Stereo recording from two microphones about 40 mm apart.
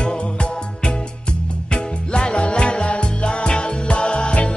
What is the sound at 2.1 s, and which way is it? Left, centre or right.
Music, left.